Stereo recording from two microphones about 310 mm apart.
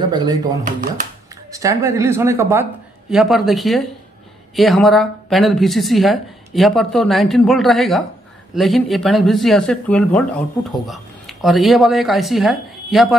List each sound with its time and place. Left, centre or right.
0.7 s speech: right
1.5 s speech: centre